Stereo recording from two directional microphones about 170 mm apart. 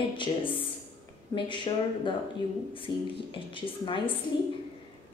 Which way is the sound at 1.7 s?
30° left (ahead or behind).